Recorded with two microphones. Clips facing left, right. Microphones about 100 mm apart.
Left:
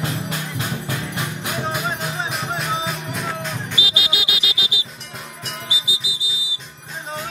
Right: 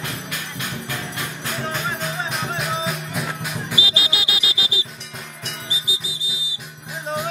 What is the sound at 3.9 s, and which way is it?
Music, 30° right (ahead or behind).